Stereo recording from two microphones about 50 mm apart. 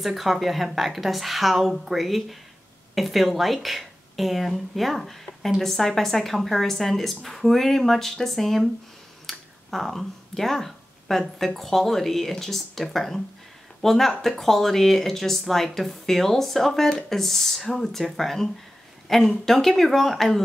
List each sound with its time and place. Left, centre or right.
0.0 s speech: centre